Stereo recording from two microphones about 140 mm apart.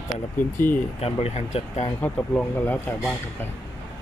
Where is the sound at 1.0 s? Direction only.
50° left (ahead or behind).